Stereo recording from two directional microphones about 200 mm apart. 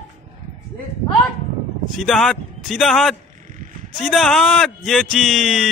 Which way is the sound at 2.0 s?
Centre (ahead or behind).